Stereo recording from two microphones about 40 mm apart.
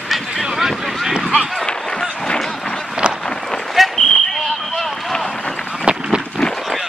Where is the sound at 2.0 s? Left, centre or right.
Centre.